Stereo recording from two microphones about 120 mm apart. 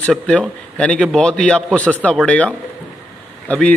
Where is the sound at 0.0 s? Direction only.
10° left (ahead or behind).